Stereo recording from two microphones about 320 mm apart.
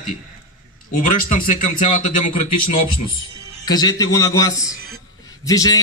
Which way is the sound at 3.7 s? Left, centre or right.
Centre.